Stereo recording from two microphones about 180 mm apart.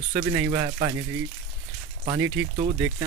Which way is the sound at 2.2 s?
90° right.